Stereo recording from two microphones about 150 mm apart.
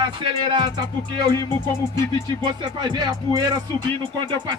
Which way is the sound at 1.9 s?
30° right (ahead or behind).